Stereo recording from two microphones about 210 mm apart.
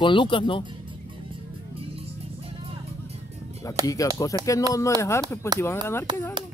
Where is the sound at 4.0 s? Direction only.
15° left (ahead or behind).